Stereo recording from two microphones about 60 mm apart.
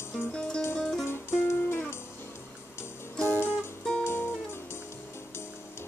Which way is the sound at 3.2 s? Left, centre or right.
Left.